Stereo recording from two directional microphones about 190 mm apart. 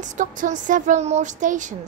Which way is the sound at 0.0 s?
40° right (ahead or behind).